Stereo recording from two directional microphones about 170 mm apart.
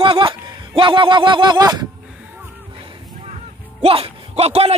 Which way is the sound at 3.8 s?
35° right (ahead or behind).